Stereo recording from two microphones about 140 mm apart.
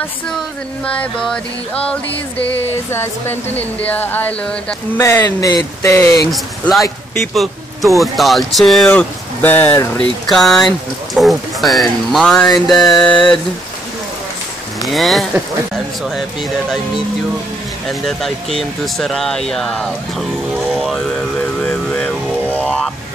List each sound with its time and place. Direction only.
1.0 s speech: 10° left (ahead or behind)
5.0 s speech: 25° left (ahead or behind)
6.3 s speech: centre (ahead or behind)
10.2 s speech: centre (ahead or behind)
14.8 s speech: centre (ahead or behind)
17.8 s speech: centre (ahead or behind)
21.5 s a sound: 10° left (ahead or behind)